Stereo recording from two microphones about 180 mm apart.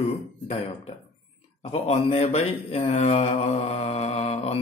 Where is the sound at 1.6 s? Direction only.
35° left (ahead or behind).